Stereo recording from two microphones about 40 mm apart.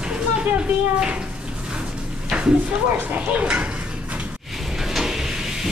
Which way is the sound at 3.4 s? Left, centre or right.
Right.